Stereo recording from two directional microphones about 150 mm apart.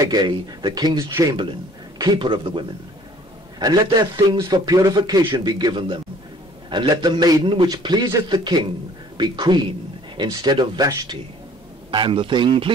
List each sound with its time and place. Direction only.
0.0 s a man's voice: 25° right (ahead or behind)